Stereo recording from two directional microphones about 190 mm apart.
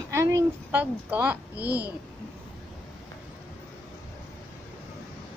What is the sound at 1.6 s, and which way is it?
Speech, 60° right (ahead or behind).